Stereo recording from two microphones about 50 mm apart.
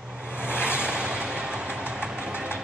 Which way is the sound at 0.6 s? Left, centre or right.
Right.